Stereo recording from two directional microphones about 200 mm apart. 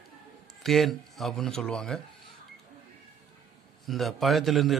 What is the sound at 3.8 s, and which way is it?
Speech, centre (ahead or behind).